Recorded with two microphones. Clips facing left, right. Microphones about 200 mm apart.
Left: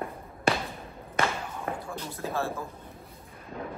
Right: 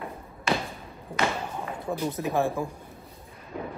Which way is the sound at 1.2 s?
50° left (ahead or behind).